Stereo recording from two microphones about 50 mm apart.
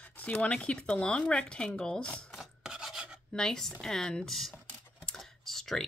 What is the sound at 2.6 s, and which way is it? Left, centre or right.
Filing, centre.